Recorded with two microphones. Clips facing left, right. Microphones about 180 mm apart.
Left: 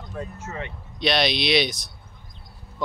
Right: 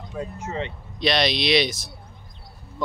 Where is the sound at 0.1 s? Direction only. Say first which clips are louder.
Right 3 dB; 10° right (ahead or behind).